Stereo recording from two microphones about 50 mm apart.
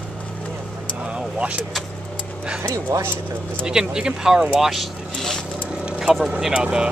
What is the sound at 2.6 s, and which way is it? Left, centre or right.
Speech, right.